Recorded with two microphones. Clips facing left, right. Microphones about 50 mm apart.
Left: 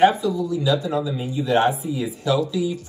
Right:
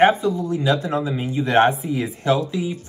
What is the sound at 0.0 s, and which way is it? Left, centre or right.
Speech, right.